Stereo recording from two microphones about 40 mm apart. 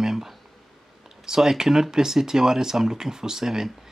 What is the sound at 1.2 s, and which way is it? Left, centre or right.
Speech, centre.